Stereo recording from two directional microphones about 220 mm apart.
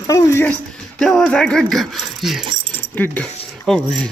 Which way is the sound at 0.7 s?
5° left (ahead or behind).